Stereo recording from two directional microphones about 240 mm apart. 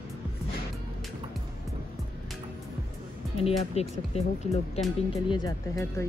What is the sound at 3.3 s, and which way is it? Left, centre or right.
Speech, left.